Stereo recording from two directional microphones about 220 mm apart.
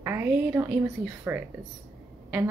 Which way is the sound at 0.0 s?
10° right (ahead or behind).